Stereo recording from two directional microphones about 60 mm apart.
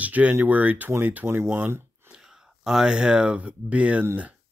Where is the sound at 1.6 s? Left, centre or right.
Right.